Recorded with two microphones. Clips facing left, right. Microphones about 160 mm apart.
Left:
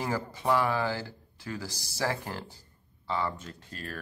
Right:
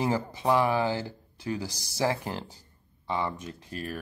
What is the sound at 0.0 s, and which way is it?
Speech, 20° right (ahead or behind).